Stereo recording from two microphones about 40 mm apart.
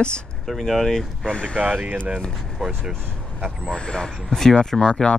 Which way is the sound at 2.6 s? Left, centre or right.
Centre.